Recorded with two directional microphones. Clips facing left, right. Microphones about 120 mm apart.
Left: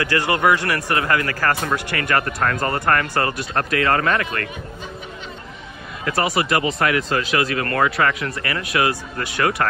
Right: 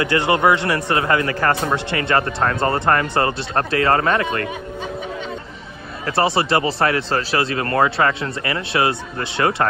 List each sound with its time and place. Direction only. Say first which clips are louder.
0.0 s speech: right 2 dB; 25° right (ahead or behind)
6.0 s speech: right 2 dB; 30° right (ahead or behind)